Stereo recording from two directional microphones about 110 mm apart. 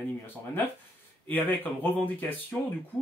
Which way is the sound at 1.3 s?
15° left (ahead or behind).